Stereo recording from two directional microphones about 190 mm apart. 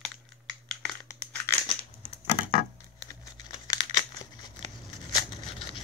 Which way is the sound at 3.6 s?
20° left (ahead or behind).